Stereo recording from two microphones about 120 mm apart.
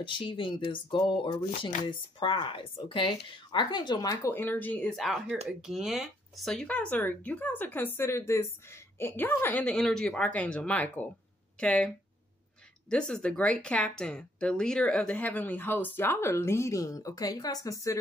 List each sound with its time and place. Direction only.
0.0 s speech: 45° left (ahead or behind)
4.3 s speech: 15° left (ahead or behind)
4.9 s speech: centre (ahead or behind)
12.9 s speech: 5° left (ahead or behind); by 17.9 s 30° left (ahead or behind)